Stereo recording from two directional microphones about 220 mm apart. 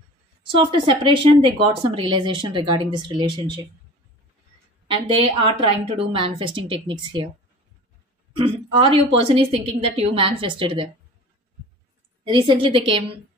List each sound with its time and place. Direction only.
0.5 s speech: 25° right (ahead or behind)
4.8 s speech: 25° right (ahead or behind)
8.4 s speech: 20° right (ahead or behind)
12.3 s speech: 20° right (ahead or behind)